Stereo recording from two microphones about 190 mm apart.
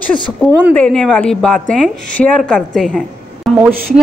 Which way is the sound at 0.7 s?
5° left (ahead or behind).